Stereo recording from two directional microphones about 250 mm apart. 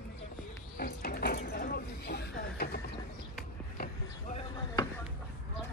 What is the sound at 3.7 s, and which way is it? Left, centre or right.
Vehicle, left.